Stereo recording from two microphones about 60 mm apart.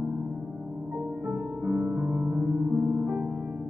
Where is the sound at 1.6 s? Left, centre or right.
Centre.